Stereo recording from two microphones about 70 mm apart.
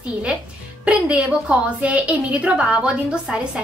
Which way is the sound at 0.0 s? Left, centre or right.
Centre.